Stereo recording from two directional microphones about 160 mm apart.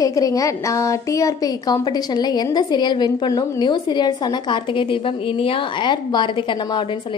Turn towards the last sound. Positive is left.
turn(degrees=30)  # may be behind; listen again after turning